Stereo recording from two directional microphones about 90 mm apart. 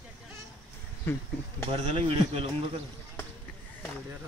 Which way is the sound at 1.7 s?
90° right.